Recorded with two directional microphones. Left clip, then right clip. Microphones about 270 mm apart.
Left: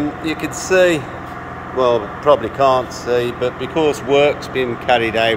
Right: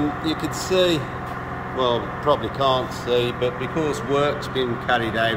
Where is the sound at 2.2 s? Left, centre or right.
Left.